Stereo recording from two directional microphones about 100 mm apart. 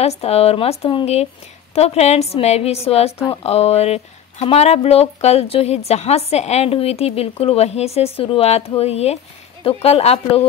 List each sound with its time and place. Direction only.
0.0 s a woman's voice: 90° left